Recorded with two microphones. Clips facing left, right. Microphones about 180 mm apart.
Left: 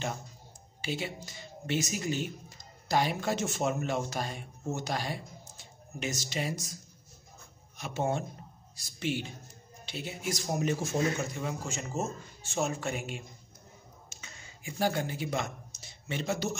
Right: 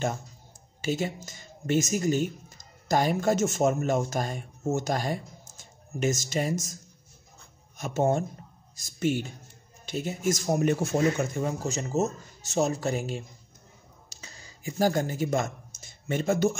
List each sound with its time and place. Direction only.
0.8 s speech: 45° right (ahead or behind)
11.4 s speech: 40° right (ahead or behind)
14.0 s a sound: 35° right (ahead or behind)